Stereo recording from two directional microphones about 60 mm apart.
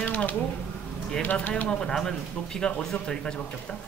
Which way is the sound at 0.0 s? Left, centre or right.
Left.